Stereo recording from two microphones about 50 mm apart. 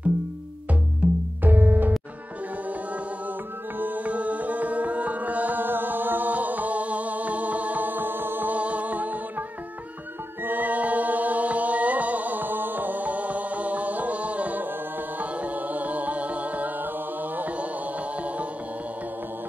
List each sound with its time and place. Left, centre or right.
1.0 s music: right
1.4 s music: right
3.7 s music: right
8.5 s music: right
10.4 s music: right